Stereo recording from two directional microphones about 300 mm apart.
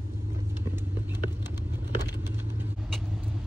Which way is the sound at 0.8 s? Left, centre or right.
Centre.